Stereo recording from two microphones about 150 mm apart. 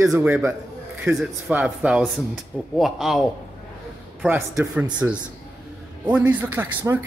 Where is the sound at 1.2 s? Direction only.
10° right (ahead or behind).